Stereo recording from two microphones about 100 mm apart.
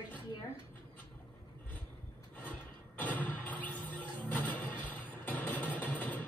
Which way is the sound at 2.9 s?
15° left (ahead or behind).